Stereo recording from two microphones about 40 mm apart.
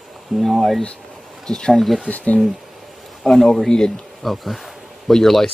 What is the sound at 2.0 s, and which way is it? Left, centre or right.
Speech, left.